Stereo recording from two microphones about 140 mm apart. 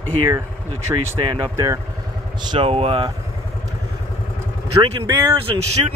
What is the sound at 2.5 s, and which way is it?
Speech, 40° right (ahead or behind).